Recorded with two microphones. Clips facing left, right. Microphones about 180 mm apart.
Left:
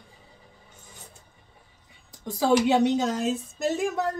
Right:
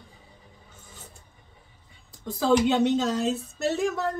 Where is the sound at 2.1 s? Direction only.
15° left (ahead or behind).